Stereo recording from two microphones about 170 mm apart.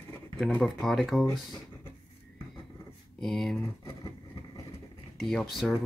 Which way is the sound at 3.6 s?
15° left (ahead or behind).